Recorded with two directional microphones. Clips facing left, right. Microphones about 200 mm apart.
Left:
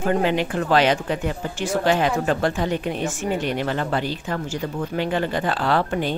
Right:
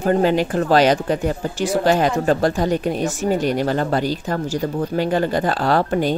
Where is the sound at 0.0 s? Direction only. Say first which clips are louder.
Right 4 dB; 40° right (ahead or behind).